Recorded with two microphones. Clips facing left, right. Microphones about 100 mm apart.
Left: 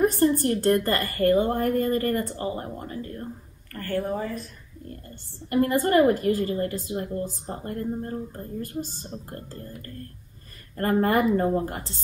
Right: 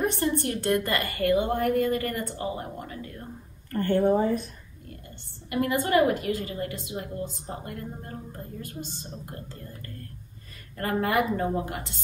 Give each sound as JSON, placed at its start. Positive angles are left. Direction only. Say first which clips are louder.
{"t": 0.0, "sound": "a woman's voice", "louder": "left 5 dB", "side_deg": 40}
{"t": 3.7, "sound": "speech", "louder": "right 6 dB", "side_deg": -25}
{"t": 5.5, "sound": "a woman's voice", "louder": "left 3 dB", "side_deg": 40}
{"t": 9.3, "sound": "a woman's voice", "louder": "left 3 dB", "side_deg": 40}